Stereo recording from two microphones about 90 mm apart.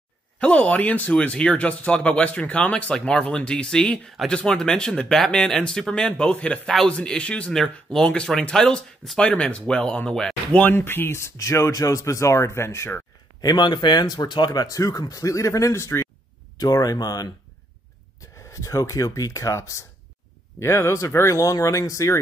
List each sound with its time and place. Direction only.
0.4 s speech: 15° left (ahead or behind)
10.6 s speech: 25° left (ahead or behind)
13.4 s speech: 50° left (ahead or behind); by 16.1 s 30° left (ahead or behind)
16.5 s speech: 45° left (ahead or behind)
18.5 s speech: 35° left (ahead or behind)